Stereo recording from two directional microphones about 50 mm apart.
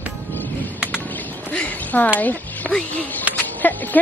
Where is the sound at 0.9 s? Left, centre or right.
Left.